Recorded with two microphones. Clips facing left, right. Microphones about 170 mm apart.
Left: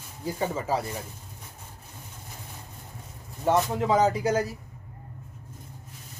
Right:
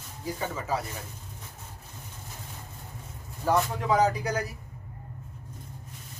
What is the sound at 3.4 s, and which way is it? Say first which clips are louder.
Speech: left 2 dB; 25° left (ahead or behind).